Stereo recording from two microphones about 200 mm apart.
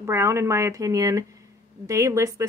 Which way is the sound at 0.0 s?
15° right (ahead or behind).